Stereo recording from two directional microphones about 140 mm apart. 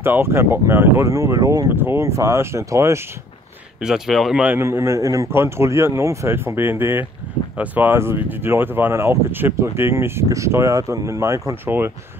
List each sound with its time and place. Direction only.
0.0 s speech: 15° right (ahead or behind)
3.8 s speech: centre (ahead or behind)